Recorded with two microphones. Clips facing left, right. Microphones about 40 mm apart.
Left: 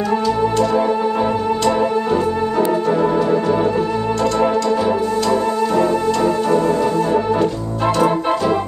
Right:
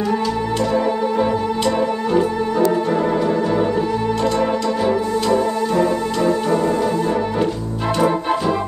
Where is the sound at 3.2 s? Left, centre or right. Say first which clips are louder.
Left 2 dB; centre.